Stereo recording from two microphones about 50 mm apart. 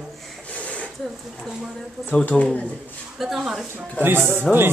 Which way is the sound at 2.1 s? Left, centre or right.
Left.